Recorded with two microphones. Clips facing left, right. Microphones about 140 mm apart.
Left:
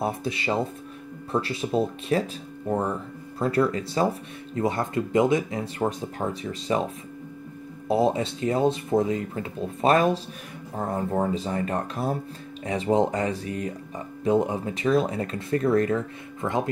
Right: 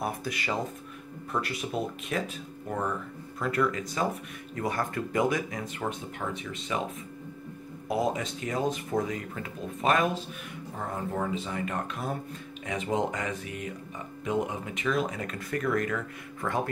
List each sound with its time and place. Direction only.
0.0 s speech: 25° left (ahead or behind)
7.9 s speech: 30° left (ahead or behind)